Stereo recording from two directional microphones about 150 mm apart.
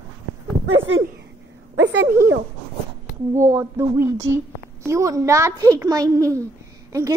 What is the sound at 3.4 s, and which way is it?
A woman's voice, 20° right (ahead or behind).